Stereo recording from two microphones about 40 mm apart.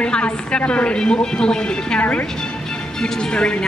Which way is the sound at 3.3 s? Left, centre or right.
Left.